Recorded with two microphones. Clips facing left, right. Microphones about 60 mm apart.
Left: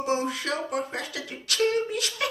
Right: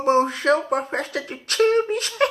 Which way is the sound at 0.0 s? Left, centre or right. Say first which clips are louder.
Right 8 dB; right.